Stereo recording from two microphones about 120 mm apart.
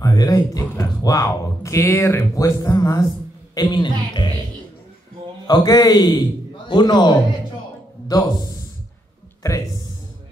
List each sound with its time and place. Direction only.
0.0 s a man's voice: 30° left (ahead or behind)
5.5 s a man's voice: 35° left (ahead or behind)